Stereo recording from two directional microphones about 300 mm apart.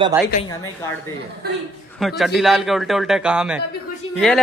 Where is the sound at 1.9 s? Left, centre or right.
Centre.